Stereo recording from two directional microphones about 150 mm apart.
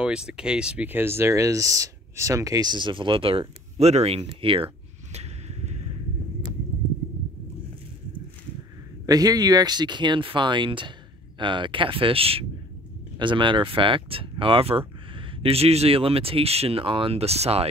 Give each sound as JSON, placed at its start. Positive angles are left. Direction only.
{"t": 0.0, "sound": "speech", "side_deg": -5}
{"t": 5.1, "sound": "a sound", "side_deg": -45}
{"t": 9.0, "sound": "speech", "side_deg": -25}